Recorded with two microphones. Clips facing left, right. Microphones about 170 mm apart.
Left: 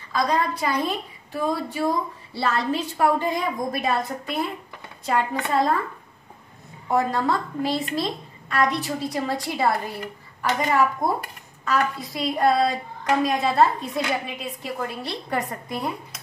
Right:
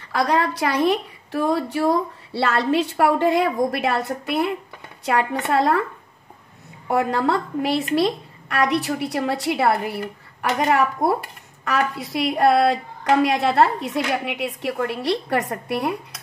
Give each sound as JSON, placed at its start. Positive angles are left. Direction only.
{"t": 0.1, "sound": "a woman's voice", "side_deg": -70}
{"t": 6.9, "sound": "a woman's voice", "side_deg": -70}
{"t": 11.6, "sound": "a woman's voice", "side_deg": -70}